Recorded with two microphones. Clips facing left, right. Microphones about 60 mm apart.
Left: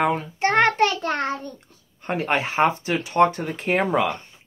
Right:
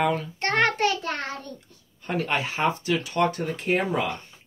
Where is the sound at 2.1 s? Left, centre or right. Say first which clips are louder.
Left 3 dB; left.